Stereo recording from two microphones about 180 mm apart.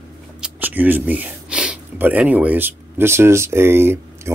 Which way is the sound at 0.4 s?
10° right (ahead or behind).